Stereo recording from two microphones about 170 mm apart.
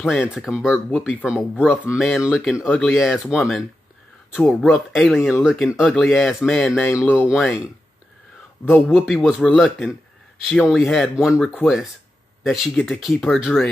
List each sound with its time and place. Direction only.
0.0 s speech: 5° right (ahead or behind)
8.9 s speech: centre (ahead or behind)